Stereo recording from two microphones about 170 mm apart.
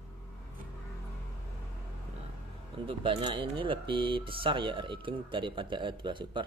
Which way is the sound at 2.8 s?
30° right (ahead or behind).